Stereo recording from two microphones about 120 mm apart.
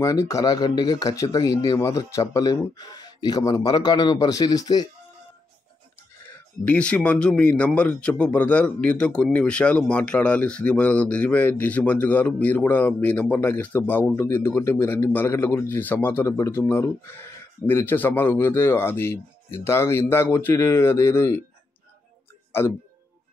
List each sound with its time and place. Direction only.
0.0 s speech: 25° left (ahead or behind)
6.6 s speech: 10° left (ahead or behind)